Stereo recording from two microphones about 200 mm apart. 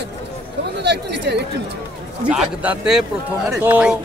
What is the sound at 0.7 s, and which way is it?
Speech, 60° right (ahead or behind).